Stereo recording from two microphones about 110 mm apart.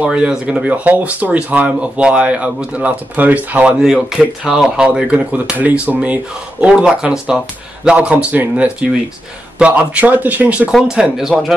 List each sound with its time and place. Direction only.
0.0 s speech: 10° right (ahead or behind)
10.7 s speech: 5° right (ahead or behind)